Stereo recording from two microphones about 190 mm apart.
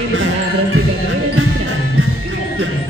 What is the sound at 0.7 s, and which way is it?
Music, 90° right.